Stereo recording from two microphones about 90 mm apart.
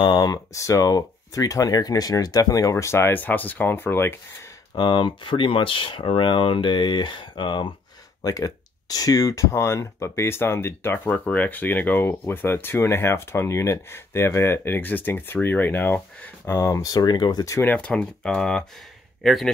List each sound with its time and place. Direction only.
0.0 s speech: 50° left (ahead or behind); by 4.5 s 25° left (ahead or behind)
4.7 s speech: 60° left (ahead or behind)
8.2 s speech: 45° left (ahead or behind)
17.7 s a man's voice: 10° left (ahead or behind)